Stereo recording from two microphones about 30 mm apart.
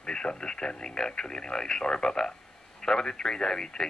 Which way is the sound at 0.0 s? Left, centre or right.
Left.